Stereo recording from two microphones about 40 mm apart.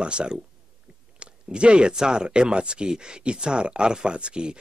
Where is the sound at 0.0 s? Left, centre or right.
Right.